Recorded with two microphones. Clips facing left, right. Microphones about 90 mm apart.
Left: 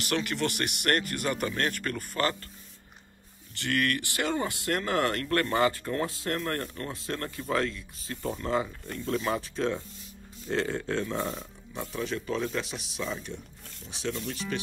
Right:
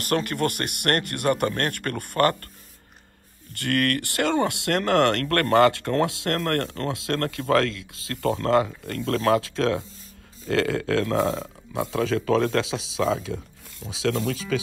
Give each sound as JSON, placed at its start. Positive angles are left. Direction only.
{"t": 0.0, "sound": "speech", "side_deg": -45}
{"t": 3.5, "sound": "speech", "side_deg": -55}